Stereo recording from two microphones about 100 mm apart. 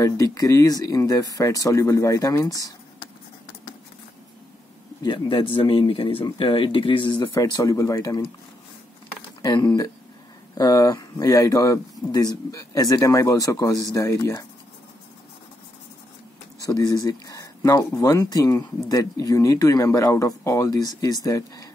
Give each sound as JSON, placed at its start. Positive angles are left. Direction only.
{"t": 0.0, "sound": "speech", "side_deg": 35}
{"t": 5.0, "sound": "speech", "side_deg": 55}
{"t": 7.3, "sound": "speech", "side_deg": 40}
{"t": 9.4, "sound": "speech", "side_deg": 45}
{"t": 16.6, "sound": "speech", "side_deg": 35}